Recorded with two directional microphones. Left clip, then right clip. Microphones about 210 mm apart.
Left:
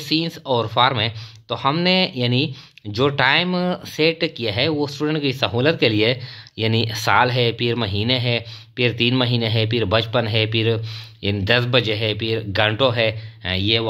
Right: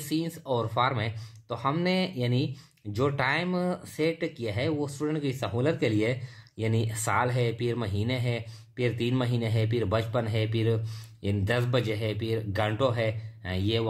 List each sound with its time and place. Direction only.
0.1 s speech: 15° left (ahead or behind)